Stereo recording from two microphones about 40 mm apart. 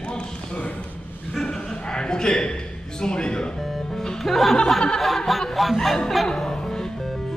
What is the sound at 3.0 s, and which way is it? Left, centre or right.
Speech, left.